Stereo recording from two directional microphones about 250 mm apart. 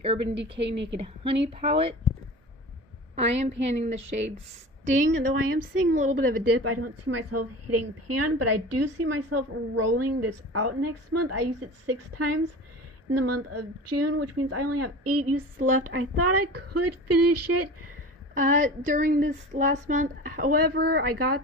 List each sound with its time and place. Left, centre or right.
0.0 s a woman's voice: right
0.3 s a woman's voice: right
1.0 s a woman's voice: right
3.2 s a woman's voice: right
6.0 s a woman's voice: right
18.6 s a woman's voice: right